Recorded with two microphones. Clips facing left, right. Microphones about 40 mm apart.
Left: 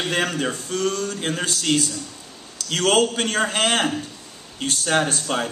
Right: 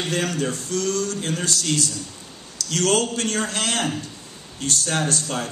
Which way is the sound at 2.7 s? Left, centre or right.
Left.